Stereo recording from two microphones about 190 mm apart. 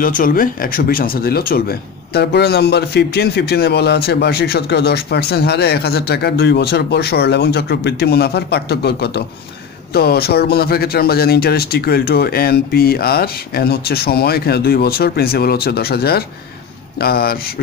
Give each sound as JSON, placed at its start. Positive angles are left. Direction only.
{"t": 0.0, "sound": "speech", "side_deg": 45}